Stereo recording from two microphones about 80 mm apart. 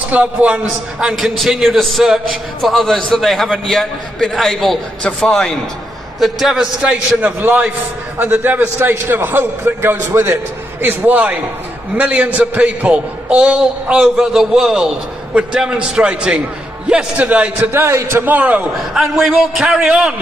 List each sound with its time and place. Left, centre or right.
0.1 s a man's voice: centre
0.9 s a man's voice: centre
6.1 s a man's voice: centre
7.2 s a man's voice: right
17.6 s a man's voice: right
18.8 s a man's voice: centre